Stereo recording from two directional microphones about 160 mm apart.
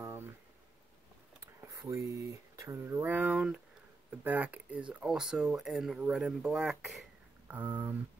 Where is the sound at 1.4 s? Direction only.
20° right (ahead or behind).